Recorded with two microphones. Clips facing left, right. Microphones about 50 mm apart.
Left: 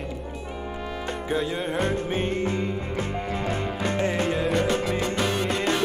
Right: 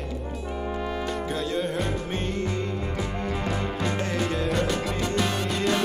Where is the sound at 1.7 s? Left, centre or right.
Left.